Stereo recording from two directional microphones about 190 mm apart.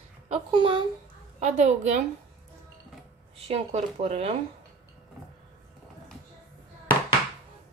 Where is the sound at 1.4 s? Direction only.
35° right (ahead or behind).